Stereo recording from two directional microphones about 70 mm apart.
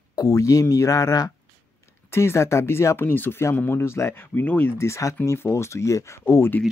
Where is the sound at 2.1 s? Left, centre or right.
Left.